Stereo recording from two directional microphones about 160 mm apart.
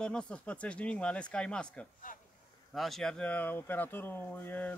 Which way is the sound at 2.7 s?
Centre (ahead or behind).